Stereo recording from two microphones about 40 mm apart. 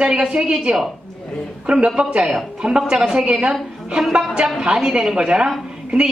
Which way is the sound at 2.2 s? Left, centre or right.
Centre.